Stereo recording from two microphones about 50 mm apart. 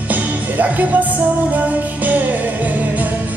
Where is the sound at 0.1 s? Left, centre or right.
Right.